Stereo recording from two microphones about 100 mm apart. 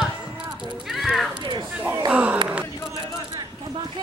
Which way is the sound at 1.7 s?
15° right (ahead or behind).